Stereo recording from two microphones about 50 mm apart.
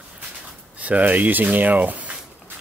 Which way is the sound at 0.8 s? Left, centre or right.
Right.